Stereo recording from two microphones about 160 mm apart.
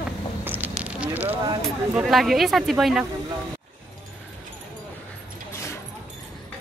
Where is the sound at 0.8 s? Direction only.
10° right (ahead or behind).